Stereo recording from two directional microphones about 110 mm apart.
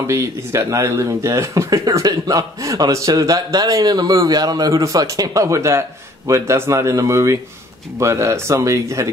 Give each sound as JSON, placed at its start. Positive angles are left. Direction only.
{"t": 0.0, "sound": "speech", "side_deg": -25}